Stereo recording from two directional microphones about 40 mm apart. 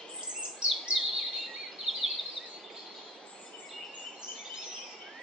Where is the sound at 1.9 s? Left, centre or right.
Centre.